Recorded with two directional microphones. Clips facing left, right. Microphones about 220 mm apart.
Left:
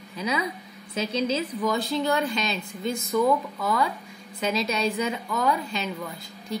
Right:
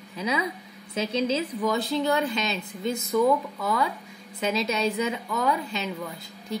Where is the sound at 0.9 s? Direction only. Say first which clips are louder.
Even; 25° right (ahead or behind).